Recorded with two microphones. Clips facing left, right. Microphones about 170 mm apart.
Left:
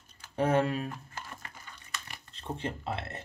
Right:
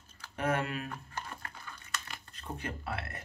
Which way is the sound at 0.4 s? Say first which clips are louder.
Left 6 dB; 30° left (ahead or behind).